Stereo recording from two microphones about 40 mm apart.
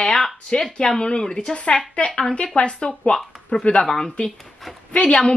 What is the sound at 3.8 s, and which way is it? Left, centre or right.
Speech, centre.